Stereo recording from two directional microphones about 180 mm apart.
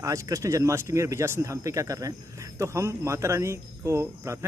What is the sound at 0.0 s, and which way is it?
Speech, 15° right (ahead or behind).